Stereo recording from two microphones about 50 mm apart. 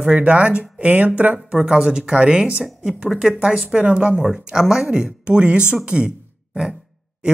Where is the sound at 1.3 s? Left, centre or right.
Centre.